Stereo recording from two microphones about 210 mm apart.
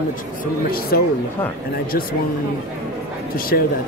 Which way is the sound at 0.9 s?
45° left (ahead or behind).